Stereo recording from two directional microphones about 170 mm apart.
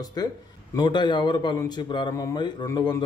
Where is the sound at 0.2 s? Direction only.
25° left (ahead or behind).